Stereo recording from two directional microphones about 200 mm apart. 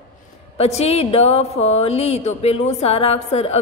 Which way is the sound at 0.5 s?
30° left (ahead or behind).